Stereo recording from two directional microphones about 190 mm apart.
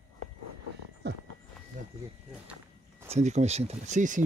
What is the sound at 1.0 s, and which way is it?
Horse, 60° right (ahead or behind).